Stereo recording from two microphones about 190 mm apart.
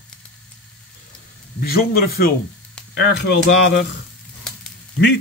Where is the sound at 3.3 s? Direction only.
75° left (ahead or behind).